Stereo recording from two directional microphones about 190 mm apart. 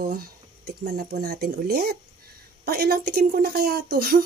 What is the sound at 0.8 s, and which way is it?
A woman's voice, 55° right (ahead or behind).